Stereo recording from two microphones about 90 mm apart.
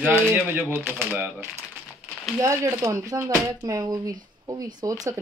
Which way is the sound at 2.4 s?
35° right (ahead or behind).